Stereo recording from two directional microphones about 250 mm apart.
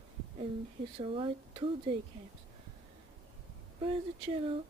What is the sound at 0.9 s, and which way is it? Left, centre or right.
Speech, right.